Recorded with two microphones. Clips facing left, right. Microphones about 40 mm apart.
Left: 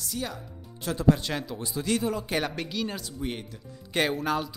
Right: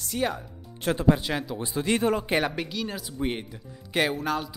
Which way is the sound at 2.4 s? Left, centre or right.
Centre.